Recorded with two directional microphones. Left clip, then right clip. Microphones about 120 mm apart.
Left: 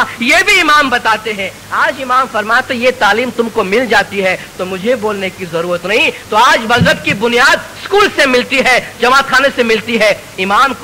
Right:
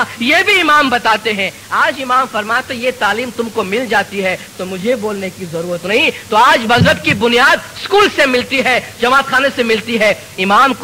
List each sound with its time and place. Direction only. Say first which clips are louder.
0.0 s a man's voice: left 2 dB; 30° right (ahead or behind)
0.6 s speech: left 2 dB; 45° right (ahead or behind); by 1.5 s 90° right
1.7 s a man's voice: left 1 dB; 45° right (ahead or behind)
2.0 s a man's voice: left 2 dB; 30° right (ahead or behind)
2.7 s speech: left 5 dB; 5° right (ahead or behind)
3.5 s speech: left 3 dB; 15° right (ahead or behind)
4.2 s a man's voice: left 3 dB; 40° right (ahead or behind)
5.9 s a man's voice: right 1 dB; 45° right (ahead or behind)
8.3 s speech: left 3 dB; 10° right (ahead or behind)
8.6 s a man's voice: left 3 dB; 30° right (ahead or behind)
10.5 s speech: even; 70° right (ahead or behind)